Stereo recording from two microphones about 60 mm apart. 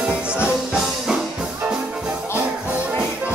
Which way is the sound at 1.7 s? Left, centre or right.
Right.